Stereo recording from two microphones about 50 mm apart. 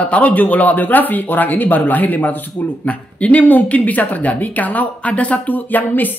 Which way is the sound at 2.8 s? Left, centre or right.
Left.